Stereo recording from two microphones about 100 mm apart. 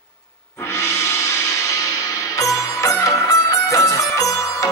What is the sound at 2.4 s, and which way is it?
Music, 35° left (ahead or behind).